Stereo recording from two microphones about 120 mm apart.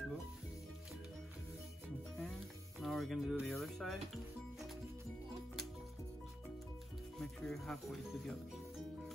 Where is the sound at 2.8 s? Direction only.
Centre (ahead or behind).